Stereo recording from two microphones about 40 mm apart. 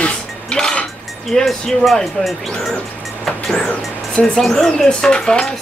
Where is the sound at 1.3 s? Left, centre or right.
Centre.